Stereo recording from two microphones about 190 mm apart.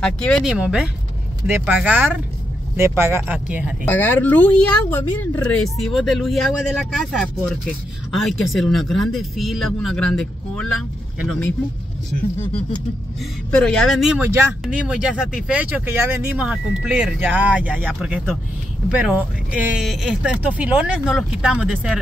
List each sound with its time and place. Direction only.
0.0 s a woman's voice: 5° left (ahead or behind)
3.9 s a woman's voice: 10° left (ahead or behind)
13.5 s a woman's voice: 5° left (ahead or behind)